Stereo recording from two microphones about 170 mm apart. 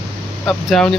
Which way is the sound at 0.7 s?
Centre (ahead or behind).